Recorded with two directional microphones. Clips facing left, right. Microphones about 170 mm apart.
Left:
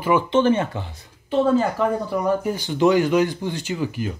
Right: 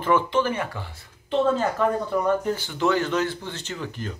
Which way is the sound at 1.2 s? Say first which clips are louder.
Left 3 dB; 5° left (ahead or behind).